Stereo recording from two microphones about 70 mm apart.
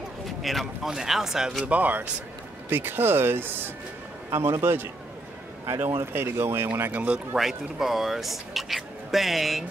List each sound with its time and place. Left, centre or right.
0.4 s speech: centre
1.7 s speech: right
6.9 s speech: right
7.3 s speech: centre